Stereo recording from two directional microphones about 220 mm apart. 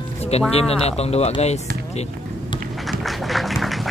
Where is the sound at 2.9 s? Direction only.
Centre (ahead or behind).